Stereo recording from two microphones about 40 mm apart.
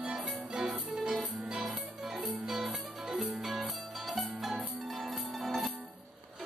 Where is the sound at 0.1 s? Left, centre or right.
Centre.